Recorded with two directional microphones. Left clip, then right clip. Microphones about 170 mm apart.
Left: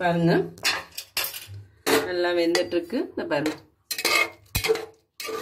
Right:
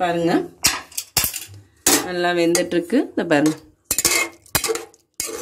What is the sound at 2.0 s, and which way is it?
Speech, 50° right (ahead or behind).